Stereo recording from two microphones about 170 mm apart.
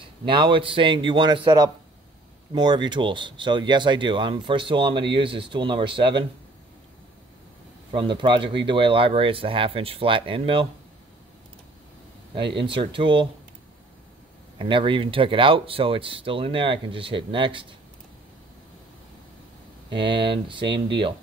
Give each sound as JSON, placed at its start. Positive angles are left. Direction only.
{"t": 0.2, "sound": "speech", "side_deg": -30}
{"t": 7.9, "sound": "speech", "side_deg": -30}
{"t": 12.5, "sound": "speech", "side_deg": -30}
{"t": 14.6, "sound": "speech", "side_deg": -30}
{"t": 19.9, "sound": "speech", "side_deg": -30}